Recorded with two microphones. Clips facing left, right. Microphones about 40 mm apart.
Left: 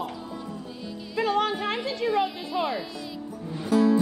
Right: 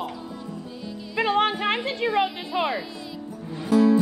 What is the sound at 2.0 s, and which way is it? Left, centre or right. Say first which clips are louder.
Speech: right 1 dB; right.